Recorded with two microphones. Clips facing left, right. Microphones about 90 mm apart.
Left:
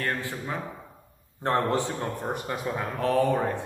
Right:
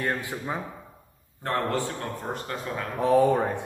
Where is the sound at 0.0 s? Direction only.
15° right (ahead or behind).